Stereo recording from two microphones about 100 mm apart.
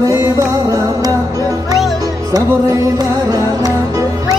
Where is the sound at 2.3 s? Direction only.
40° right (ahead or behind).